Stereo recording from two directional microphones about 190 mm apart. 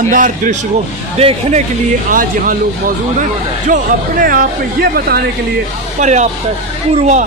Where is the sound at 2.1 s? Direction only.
45° right (ahead or behind).